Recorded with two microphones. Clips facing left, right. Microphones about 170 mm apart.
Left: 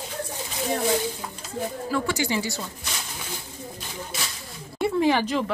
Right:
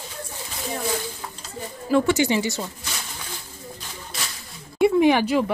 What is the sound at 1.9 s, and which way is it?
Speech, 20° right (ahead or behind).